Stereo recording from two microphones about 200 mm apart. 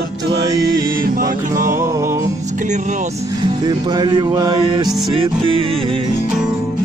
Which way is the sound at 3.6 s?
20° right (ahead or behind).